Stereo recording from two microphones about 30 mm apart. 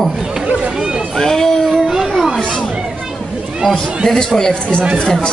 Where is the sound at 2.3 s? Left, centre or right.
Left.